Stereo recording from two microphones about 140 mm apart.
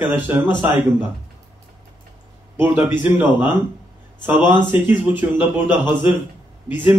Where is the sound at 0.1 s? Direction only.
15° right (ahead or behind).